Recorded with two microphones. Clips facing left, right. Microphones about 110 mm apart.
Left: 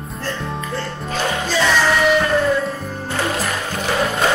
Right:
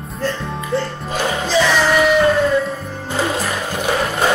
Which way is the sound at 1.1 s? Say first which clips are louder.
Right 1 dB; 15° right (ahead or behind).